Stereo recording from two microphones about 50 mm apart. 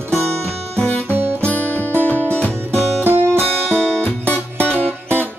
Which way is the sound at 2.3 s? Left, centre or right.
Left.